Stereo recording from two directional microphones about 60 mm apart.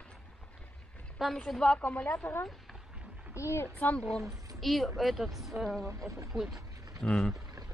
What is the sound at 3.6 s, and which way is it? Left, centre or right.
Speech, left.